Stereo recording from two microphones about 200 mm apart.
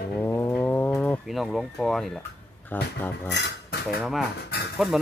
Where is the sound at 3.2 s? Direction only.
60° left (ahead or behind).